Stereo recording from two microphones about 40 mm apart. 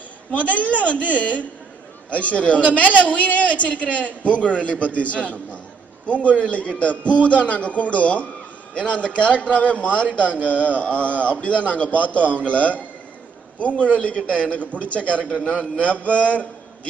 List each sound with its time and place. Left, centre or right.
0.3 s a man's voice: left
15.3 s a man's voice: left
15.8 s a man's voice: left